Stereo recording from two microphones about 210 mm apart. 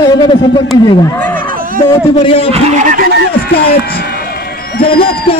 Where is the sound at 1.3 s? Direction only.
40° right (ahead or behind).